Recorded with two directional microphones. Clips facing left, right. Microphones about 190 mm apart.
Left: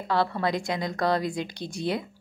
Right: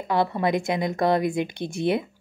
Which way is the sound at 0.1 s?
20° right (ahead or behind).